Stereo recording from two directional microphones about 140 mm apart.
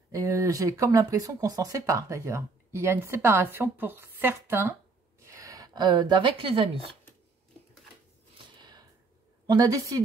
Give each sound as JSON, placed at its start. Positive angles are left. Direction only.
{"t": 0.1, "sound": "a woman's voice", "side_deg": -25}
{"t": 8.5, "sound": "a sound", "side_deg": -30}
{"t": 9.5, "sound": "speech", "side_deg": -25}